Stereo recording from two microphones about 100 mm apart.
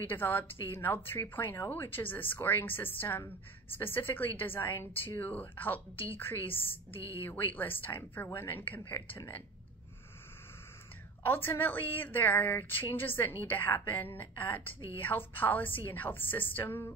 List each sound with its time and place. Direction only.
0.0 s speech: 20° left (ahead or behind)
11.2 s speech: 20° left (ahead or behind)